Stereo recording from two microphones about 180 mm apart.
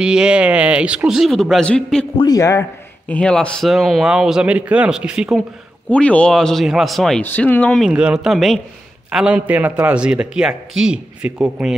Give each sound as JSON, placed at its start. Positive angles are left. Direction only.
{"t": 0.0, "sound": "a man's voice", "side_deg": -5}
{"t": 2.1, "sound": "a man's voice", "side_deg": 20}
{"t": 3.1, "sound": "a man's voice", "side_deg": 5}
{"t": 5.9, "sound": "a man's voice", "side_deg": 5}
{"t": 7.9, "sound": "a man's voice", "side_deg": -5}